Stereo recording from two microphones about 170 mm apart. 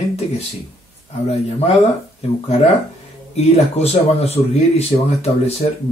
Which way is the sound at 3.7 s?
35° left (ahead or behind).